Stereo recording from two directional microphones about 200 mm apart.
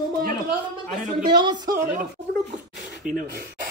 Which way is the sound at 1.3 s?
20° right (ahead or behind).